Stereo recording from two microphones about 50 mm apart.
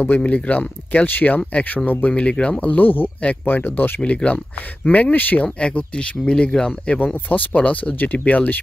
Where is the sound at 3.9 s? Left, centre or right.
Left.